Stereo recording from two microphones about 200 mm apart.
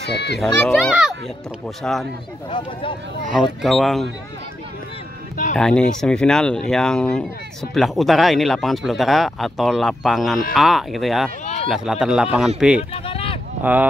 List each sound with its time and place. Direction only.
0.1 s a child's voice: 55° left (ahead or behind)
0.4 s speech: centre (ahead or behind)
2.5 s speech: 25° left (ahead or behind)
3.6 s speech: centre (ahead or behind)
5.6 s speech: 5° left (ahead or behind)
11.4 s a sound: 35° left (ahead or behind)
11.7 s speech: centre (ahead or behind)
12.9 s a sound: 30° left (ahead or behind)
13.6 s speech: 10° right (ahead or behind)